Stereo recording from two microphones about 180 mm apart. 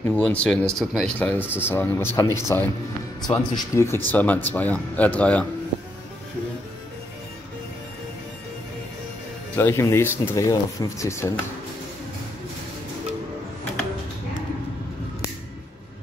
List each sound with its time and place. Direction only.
0.0 s speech: 10° left (ahead or behind)
9.6 s speech: 15° left (ahead or behind)